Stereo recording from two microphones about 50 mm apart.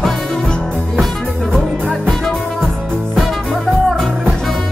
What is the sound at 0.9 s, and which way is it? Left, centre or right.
Music, centre.